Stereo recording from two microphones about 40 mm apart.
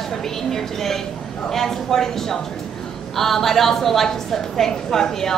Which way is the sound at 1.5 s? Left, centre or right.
Centre.